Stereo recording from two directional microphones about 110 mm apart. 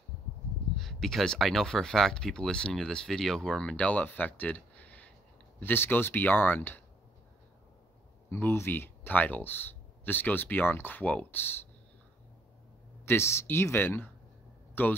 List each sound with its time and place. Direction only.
0.7 s speech: centre (ahead or behind); by 6.8 s 20° left (ahead or behind)
8.3 s speech: 20° left (ahead or behind)
13.0 s speech: 25° left (ahead or behind)